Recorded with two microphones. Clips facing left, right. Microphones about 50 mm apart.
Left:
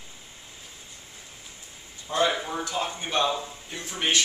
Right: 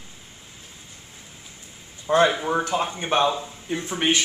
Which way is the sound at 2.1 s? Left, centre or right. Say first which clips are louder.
Right 6 dB; right.